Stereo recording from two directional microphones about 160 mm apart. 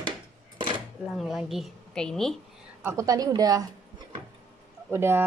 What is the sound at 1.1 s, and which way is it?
Speech, centre (ahead or behind).